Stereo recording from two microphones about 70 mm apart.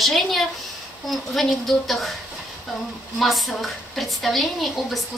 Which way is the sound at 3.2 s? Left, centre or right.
Centre.